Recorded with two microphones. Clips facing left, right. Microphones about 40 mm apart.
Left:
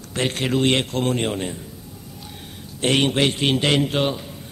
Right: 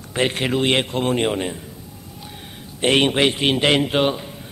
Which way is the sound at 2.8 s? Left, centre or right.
Right.